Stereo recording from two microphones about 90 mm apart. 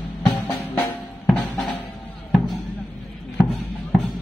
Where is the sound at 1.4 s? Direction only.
Centre (ahead or behind).